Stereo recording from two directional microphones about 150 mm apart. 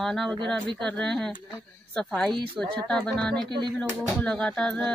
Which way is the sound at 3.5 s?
30° right (ahead or behind).